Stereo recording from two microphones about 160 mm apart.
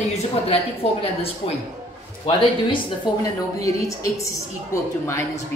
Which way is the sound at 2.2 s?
40° left (ahead or behind).